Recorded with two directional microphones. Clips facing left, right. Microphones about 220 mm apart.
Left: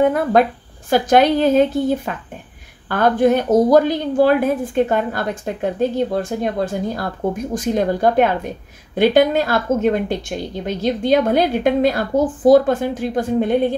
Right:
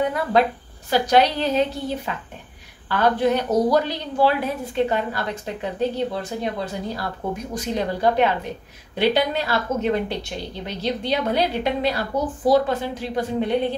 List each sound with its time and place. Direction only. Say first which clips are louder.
0.1 s a woman's voice: left 4 dB; 50° left (ahead or behind)